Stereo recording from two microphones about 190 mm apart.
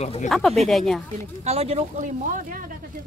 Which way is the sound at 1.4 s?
35° right (ahead or behind).